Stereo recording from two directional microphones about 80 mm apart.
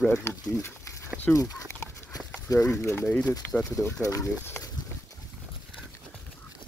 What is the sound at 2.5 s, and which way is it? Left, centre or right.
Speech, left.